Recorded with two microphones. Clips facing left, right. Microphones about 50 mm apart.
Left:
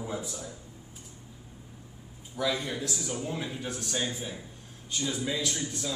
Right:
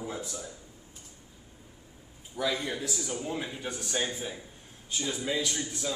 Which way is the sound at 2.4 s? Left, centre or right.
Centre.